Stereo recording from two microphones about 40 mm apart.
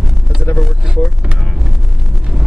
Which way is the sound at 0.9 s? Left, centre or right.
Right.